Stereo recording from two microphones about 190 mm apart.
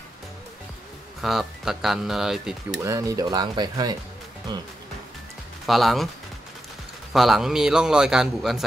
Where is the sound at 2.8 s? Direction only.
15° right (ahead or behind).